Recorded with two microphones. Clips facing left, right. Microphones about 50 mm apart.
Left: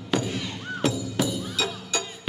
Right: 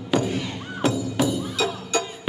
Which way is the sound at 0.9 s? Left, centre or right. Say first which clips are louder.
Right 4 dB; right.